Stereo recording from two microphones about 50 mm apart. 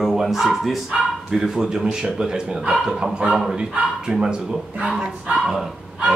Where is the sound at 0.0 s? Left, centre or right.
Centre.